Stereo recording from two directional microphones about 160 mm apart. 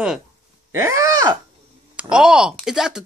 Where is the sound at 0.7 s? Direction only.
20° right (ahead or behind).